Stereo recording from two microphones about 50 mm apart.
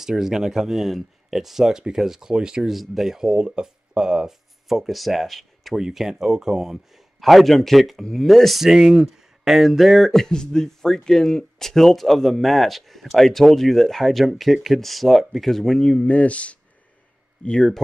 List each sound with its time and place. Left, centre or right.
0.0 s speech: centre
2.7 s speech: centre
7.2 s speech: centre
16.1 s speech: left
17.5 s speech: centre